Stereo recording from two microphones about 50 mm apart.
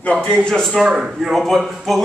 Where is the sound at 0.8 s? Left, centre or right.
Centre.